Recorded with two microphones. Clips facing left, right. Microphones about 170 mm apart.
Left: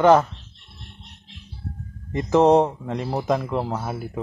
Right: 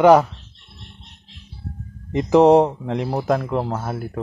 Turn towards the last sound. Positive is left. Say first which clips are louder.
# right 2 dB
turn(degrees=0)  # may be behind; listen again after turning